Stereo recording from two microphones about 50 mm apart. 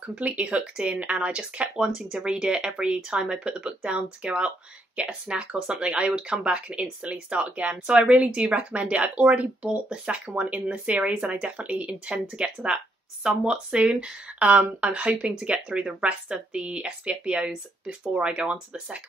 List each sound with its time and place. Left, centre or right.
0.2 s speech: right
7.8 s speech: centre